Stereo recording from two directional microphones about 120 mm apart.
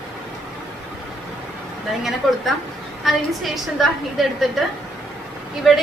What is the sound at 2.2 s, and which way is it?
A woman's voice, centre (ahead or behind).